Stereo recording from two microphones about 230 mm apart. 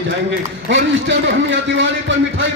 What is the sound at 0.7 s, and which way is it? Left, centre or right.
A man's voice, right.